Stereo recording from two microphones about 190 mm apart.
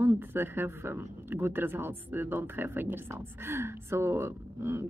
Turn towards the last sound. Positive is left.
turn(degrees=-10)  # may be behind; listen again after turning